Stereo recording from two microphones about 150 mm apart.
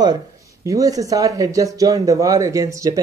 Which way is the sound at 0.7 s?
25° right (ahead or behind).